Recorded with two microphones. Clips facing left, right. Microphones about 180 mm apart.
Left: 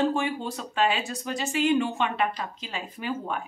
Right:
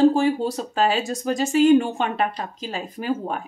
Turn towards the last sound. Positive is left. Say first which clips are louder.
# right 5 dB
turn(degrees=-40)  # may be behind; listen again after turning